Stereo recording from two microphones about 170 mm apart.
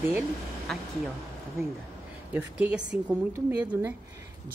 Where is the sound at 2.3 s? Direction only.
10° right (ahead or behind).